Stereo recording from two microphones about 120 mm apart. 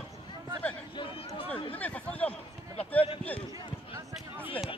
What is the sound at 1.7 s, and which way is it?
Speech, 10° left (ahead or behind).